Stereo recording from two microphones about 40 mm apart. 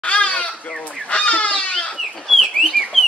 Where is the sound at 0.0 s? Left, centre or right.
Left.